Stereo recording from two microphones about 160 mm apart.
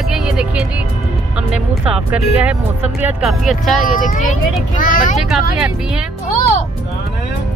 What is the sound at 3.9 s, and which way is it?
Speech, 55° left (ahead or behind).